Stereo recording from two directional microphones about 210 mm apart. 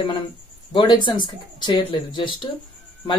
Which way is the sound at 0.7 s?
20° left (ahead or behind).